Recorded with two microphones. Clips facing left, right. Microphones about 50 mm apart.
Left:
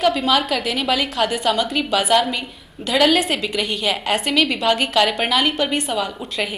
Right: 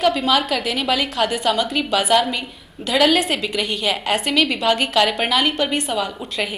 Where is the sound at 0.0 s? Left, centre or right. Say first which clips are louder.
Even; centre.